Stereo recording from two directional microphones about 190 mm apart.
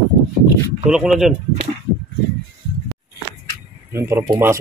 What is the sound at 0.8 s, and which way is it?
Speech, 5° right (ahead or behind).